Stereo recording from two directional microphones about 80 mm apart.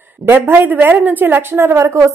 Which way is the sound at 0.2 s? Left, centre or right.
Right.